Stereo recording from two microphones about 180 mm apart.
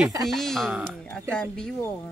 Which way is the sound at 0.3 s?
Centre (ahead or behind).